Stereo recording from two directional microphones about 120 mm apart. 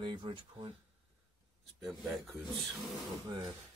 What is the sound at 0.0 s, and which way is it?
Speech, 40° right (ahead or behind).